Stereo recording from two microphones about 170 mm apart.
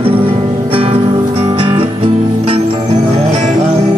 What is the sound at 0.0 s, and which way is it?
Music, 35° right (ahead or behind).